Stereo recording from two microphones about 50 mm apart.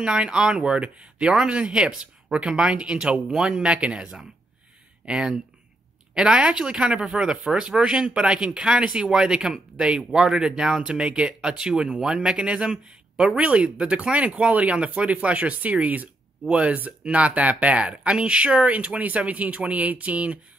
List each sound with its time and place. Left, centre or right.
0.0 s speech: centre
13.4 s speech: right